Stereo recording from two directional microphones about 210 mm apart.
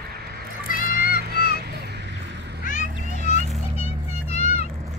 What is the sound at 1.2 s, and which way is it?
Honk, 45° right (ahead or behind).